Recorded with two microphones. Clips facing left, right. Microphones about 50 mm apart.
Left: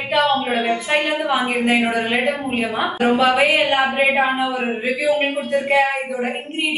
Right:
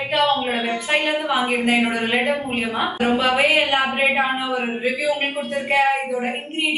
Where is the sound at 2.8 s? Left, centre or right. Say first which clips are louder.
Left 3 dB; left.